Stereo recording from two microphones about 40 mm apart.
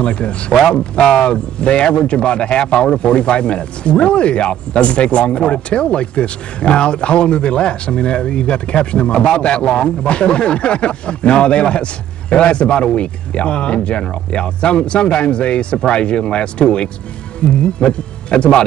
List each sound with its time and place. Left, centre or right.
0.0 s speech: left